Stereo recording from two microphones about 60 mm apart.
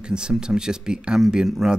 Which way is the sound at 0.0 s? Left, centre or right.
Centre.